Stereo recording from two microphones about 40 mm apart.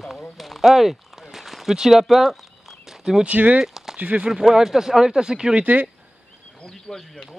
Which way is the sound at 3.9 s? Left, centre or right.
Right.